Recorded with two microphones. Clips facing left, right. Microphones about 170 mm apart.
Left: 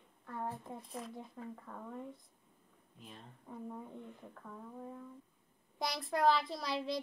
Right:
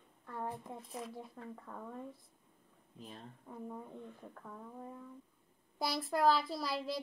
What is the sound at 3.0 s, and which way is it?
Speech, 40° right (ahead or behind).